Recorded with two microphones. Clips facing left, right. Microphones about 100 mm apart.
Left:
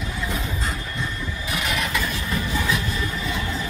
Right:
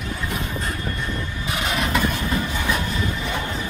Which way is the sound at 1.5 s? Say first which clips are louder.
Right 3 dB; 30° right (ahead or behind).